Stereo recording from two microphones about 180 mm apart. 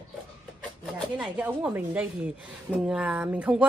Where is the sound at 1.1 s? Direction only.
5° right (ahead or behind).